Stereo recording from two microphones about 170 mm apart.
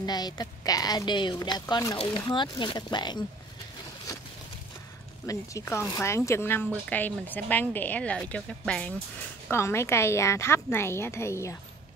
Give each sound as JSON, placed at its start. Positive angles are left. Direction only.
{"t": 0.0, "sound": "a woman's voice", "side_deg": 25}
{"t": 5.2, "sound": "speech", "side_deg": 20}